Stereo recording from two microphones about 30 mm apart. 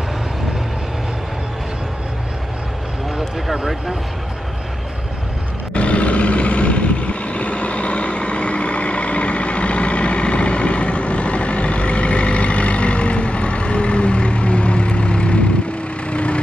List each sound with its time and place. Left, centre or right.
5.8 s vehicle: left